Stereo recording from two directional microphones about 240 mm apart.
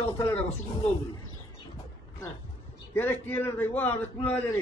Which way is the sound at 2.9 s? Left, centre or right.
Centre.